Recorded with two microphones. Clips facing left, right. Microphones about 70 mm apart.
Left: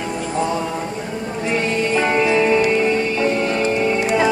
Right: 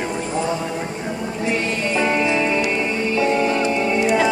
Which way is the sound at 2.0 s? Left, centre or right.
Left.